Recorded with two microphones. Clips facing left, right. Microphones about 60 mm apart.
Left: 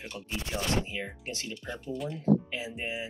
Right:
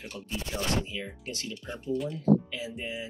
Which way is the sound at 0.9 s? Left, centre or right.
Left.